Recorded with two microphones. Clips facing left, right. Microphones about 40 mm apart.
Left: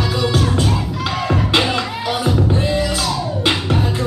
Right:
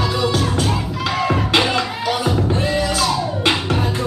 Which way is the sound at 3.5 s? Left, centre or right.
Centre.